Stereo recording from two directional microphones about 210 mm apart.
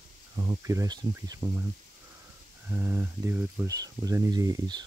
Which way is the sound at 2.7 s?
10° right (ahead or behind).